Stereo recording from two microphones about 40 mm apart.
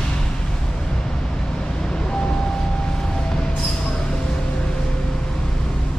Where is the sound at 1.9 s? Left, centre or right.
Centre.